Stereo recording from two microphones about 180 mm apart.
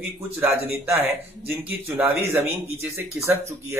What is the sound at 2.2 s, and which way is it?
Speech, 15° right (ahead or behind).